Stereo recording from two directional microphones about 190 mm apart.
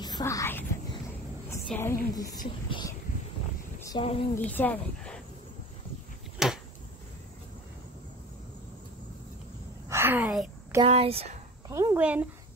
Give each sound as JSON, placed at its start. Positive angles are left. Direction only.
{"t": 0.0, "sound": "speech", "side_deg": 20}
{"t": 4.0, "sound": "a woman's voice", "side_deg": 30}
{"t": 4.4, "sound": "speech", "side_deg": 10}
{"t": 6.3, "sound": "a sound", "side_deg": -5}
{"t": 9.8, "sound": "a sound", "side_deg": -10}
{"t": 10.8, "sound": "speech", "side_deg": -30}
{"t": 11.7, "sound": "speech", "side_deg": -15}